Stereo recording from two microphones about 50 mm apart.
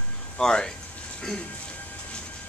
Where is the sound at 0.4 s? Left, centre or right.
Centre.